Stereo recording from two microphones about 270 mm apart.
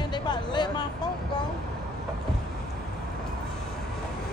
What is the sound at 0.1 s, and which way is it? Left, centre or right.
Music, centre.